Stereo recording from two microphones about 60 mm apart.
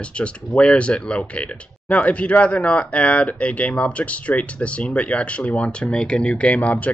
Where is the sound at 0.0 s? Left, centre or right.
Centre.